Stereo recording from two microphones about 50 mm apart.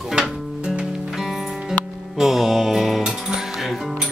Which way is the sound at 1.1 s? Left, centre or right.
Centre.